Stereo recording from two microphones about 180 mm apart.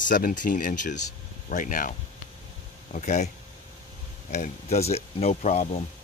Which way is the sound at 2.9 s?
40° left (ahead or behind).